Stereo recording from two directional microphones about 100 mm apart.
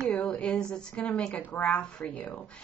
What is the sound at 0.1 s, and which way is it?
A woman's voice, 10° left (ahead or behind).